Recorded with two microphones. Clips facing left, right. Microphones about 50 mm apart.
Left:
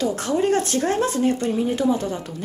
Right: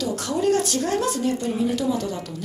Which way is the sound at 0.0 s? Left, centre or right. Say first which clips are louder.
Left 2 dB; left.